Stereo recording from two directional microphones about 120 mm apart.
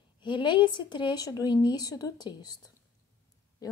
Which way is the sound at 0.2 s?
40° left (ahead or behind).